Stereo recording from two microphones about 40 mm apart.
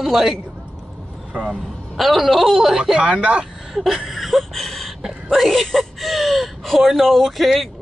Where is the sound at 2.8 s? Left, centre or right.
Centre.